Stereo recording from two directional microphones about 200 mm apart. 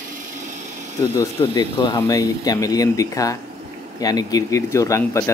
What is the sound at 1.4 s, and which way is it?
Speech, 20° left (ahead or behind).